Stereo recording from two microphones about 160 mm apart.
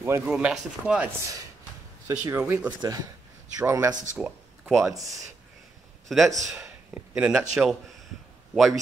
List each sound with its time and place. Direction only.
0.0 s speech: 10° right (ahead or behind)
2.0 s speech: 15° right (ahead or behind)
2.8 s a man's voice: 25° right (ahead or behind)
4.2 s a sound: centre (ahead or behind)
4.9 s a man's voice: 20° right (ahead or behind)
6.0 s a man's voice: centre (ahead or behind)